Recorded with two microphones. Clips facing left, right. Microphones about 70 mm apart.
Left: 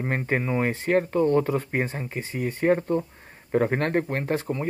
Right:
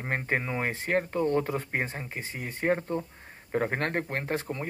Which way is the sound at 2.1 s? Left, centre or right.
Right.